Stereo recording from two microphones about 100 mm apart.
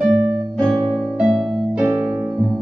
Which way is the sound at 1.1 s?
5° right (ahead or behind).